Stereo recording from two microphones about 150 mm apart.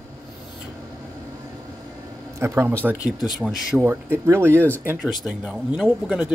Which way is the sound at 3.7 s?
15° right (ahead or behind).